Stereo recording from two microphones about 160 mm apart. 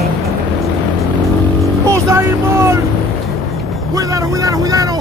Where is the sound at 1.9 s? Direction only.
20° right (ahead or behind).